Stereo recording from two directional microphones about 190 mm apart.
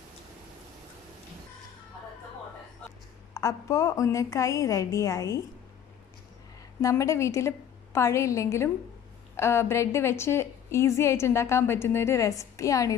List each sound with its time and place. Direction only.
3.3 s a woman's voice: 15° left (ahead or behind)
6.8 s a woman's voice: 15° left (ahead or behind)